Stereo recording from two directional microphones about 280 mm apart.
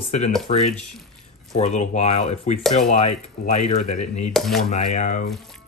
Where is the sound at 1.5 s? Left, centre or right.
Left.